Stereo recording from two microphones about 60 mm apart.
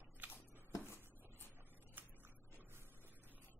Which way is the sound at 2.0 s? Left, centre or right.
Right.